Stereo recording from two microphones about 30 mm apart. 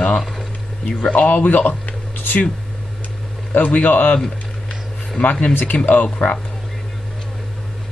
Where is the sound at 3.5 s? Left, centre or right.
Left.